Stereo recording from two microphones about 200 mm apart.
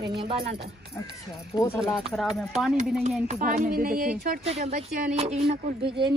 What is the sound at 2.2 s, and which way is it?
Speech, centre (ahead or behind).